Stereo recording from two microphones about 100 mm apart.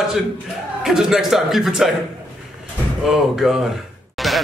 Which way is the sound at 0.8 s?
5° right (ahead or behind).